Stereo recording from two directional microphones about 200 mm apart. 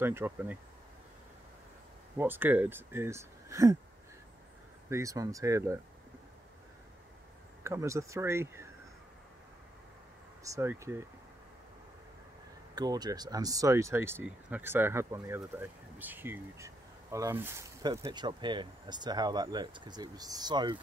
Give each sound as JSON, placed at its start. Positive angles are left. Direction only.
{"t": 0.0, "sound": "speech", "side_deg": -10}
{"t": 2.1, "sound": "speech", "side_deg": -10}
{"t": 4.8, "sound": "speech", "side_deg": -15}
{"t": 7.6, "sound": "speech", "side_deg": -15}
{"t": 10.4, "sound": "speech", "side_deg": -15}
{"t": 12.7, "sound": "speech", "side_deg": -20}